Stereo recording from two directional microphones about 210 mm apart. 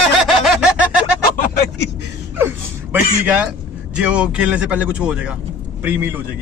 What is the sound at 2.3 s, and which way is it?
A man's voice, 10° right (ahead or behind).